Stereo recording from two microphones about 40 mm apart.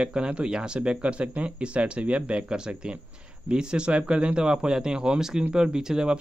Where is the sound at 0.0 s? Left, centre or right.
Right.